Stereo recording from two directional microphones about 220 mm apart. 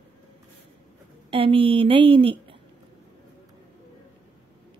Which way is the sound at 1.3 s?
25° right (ahead or behind).